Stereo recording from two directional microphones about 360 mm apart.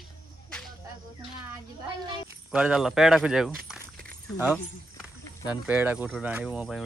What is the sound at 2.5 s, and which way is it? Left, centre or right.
A man's voice, centre.